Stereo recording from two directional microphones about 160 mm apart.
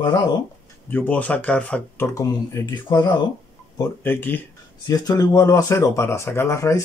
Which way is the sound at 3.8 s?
10° left (ahead or behind).